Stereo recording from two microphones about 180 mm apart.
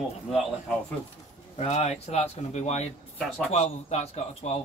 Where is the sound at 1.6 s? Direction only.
35° left (ahead or behind).